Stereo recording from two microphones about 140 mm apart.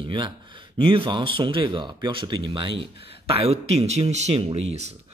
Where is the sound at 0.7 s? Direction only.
40° right (ahead or behind).